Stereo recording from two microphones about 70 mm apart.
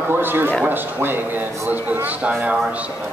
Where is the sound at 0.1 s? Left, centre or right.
Right.